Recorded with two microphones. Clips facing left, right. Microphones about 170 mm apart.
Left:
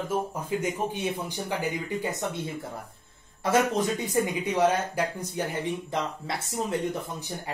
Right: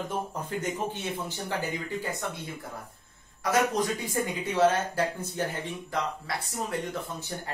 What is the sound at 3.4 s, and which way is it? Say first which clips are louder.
Speech: left 2 dB; 25° left (ahead or behind).